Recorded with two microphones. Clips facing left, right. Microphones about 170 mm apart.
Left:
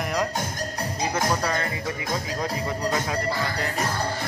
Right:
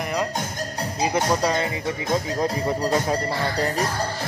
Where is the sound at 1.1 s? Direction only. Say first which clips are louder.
Right 4 dB; 20° right (ahead or behind).